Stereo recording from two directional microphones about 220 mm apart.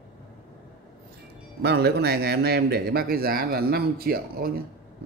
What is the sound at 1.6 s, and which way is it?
Speech, 45° right (ahead or behind).